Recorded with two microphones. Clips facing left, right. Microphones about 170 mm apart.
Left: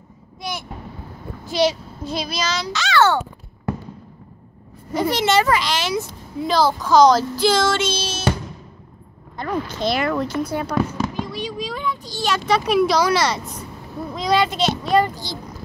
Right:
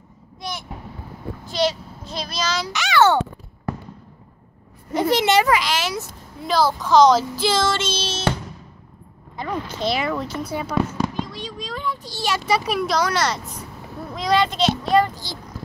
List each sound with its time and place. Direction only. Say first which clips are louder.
0.4 s a sound: left 2 dB; 5° left (ahead or behind)
1.5 s a child's voice: left 3 dB; 10° left (ahead or behind)
2.7 s a child's voice: right 1 dB; 15° right (ahead or behind)
5.1 s a child's voice: right 1 dB; 15° right (ahead or behind); by 8.3 s 5° left (ahead or behind)
9.4 s a child's voice: left 2 dB; 5° right (ahead or behind)
11.1 s a child's voice: left 3 dB; 5° left (ahead or behind)